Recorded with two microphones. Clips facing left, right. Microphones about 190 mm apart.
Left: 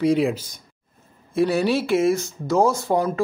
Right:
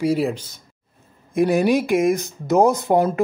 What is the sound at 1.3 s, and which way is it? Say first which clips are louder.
Speech: right 3 dB; 15° right (ahead or behind).